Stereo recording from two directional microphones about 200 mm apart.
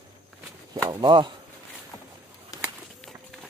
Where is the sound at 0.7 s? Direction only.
25° right (ahead or behind).